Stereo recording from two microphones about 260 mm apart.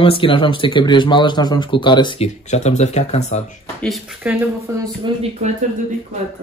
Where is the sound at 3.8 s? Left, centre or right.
Centre; by 5.5 s right.